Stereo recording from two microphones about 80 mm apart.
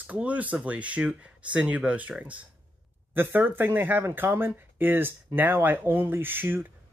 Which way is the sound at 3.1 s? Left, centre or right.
Right.